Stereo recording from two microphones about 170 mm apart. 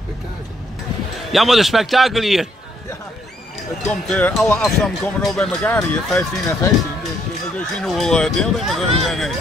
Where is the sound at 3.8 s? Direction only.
5° left (ahead or behind).